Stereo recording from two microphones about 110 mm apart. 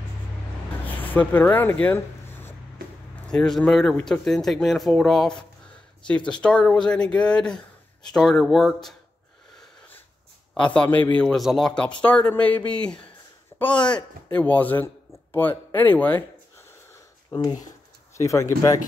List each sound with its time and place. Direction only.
0.8 s a sound: 15° left (ahead or behind)
3.3 s speech: 5° left (ahead or behind)
10.5 s a man's voice: 10° left (ahead or behind)
13.5 s a sound: 15° left (ahead or behind)
13.8 s speech: 10° left (ahead or behind)
17.3 s speech: 40° left (ahead or behind)
18.1 s speech: 30° left (ahead or behind)